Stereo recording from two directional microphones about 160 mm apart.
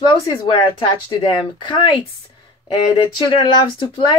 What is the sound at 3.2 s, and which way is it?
Speech, 35° left (ahead or behind).